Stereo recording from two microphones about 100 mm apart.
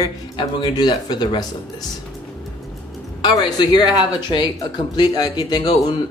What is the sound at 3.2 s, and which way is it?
Speech, 45° left (ahead or behind).